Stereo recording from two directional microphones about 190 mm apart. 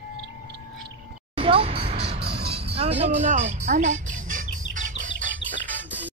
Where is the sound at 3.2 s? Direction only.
35° right (ahead or behind).